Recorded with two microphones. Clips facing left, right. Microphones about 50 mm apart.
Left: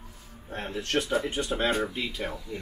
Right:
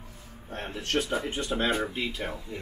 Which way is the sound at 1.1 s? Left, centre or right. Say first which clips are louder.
Left 2 dB; centre.